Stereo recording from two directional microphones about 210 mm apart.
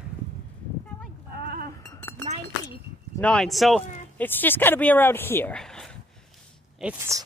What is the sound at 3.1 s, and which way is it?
Speech, 5° left (ahead or behind).